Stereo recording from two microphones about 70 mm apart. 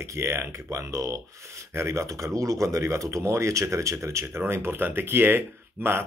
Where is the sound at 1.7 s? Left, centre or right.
Right.